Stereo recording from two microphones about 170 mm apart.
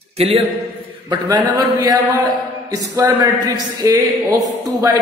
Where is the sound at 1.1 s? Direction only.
20° right (ahead or behind).